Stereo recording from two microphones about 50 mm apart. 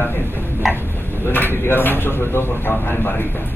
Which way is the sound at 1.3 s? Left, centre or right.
Left.